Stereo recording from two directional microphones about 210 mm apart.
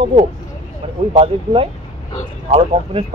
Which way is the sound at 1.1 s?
25° right (ahead or behind).